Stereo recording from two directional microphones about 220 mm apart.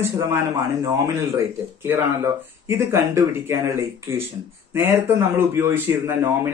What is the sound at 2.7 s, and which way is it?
Speech, 10° right (ahead or behind).